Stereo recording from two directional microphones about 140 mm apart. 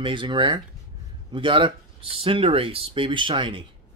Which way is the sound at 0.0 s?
35° right (ahead or behind).